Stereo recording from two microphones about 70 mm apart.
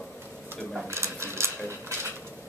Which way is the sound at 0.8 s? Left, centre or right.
Right.